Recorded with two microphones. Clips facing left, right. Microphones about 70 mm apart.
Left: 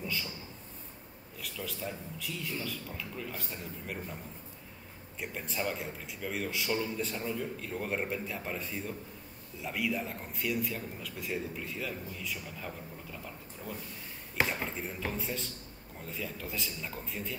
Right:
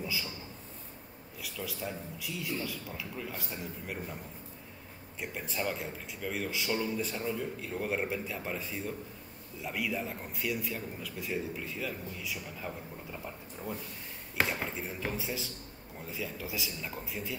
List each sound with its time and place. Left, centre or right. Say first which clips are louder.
0.0 s speech: even; centre
1.4 s a man's voice: even; centre
5.2 s a man's voice: even; centre
13.1 s speech: right 2 dB; right
14.3 s a man's voice: even; centre